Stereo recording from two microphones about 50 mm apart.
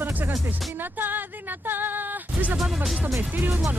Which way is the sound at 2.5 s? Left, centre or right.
Centre.